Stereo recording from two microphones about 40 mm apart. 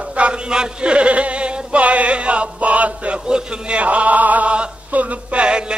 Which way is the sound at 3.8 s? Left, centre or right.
Right.